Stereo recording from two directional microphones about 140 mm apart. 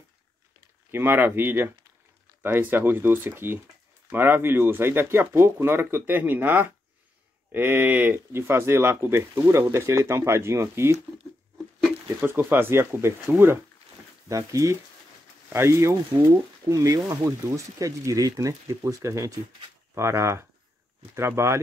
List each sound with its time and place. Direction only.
0.9 s speech: 15° right (ahead or behind)
11.5 s a sound: 5° right (ahead or behind)
12.3 s speech: 15° right (ahead or behind)